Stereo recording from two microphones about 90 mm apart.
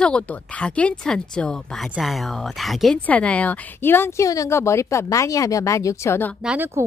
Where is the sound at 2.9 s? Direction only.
15° left (ahead or behind).